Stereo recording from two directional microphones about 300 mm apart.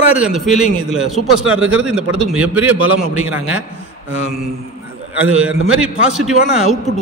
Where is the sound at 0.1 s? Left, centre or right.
Centre.